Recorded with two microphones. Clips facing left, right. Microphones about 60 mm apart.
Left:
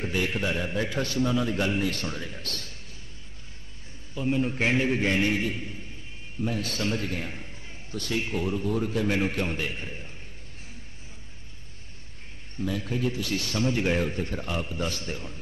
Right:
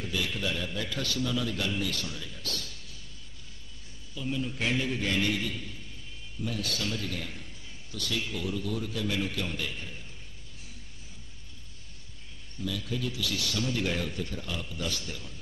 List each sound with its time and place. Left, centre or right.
0.0 s a man's voice: left
4.1 s a man's voice: left
12.5 s a man's voice: left